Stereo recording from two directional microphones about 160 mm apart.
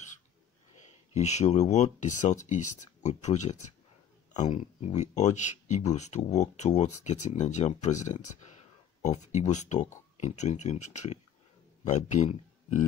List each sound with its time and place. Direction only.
1.1 s speech: 45° left (ahead or behind)
4.3 s a sound: 45° left (ahead or behind)
4.6 s speech: 45° left (ahead or behind)